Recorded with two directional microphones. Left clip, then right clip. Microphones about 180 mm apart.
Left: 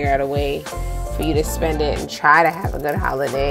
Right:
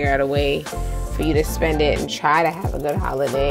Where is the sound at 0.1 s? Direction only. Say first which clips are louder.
Right 1 dB; 15° right (ahead or behind).